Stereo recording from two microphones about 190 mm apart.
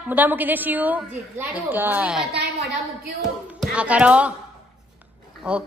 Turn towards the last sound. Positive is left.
turn(degrees=-5)  # may be behind; listen again after turning